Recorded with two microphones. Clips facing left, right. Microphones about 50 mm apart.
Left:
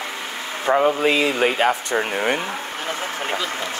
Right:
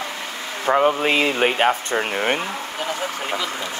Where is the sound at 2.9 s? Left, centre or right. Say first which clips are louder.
Even; left.